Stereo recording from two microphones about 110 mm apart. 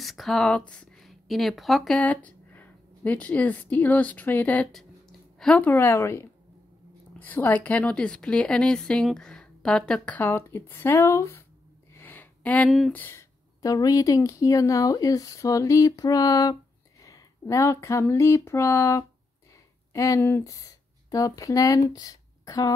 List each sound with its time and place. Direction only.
0.0 s speech: centre (ahead or behind)
2.0 s a woman's voice: 15° left (ahead or behind)
12.0 s a sound: 15° left (ahead or behind)
12.6 s speech: centre (ahead or behind)
12.9 s speech: 20° left (ahead or behind)
13.6 s speech: 35° left (ahead or behind)
17.0 s a sound: 30° left (ahead or behind)
19.9 s speech: 30° left (ahead or behind)
20.2 s a woman's voice: 20° left (ahead or behind)
20.4 s speech: 30° left (ahead or behind)